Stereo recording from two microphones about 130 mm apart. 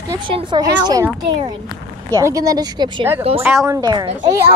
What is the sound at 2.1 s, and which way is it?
Speech, 25° right (ahead or behind).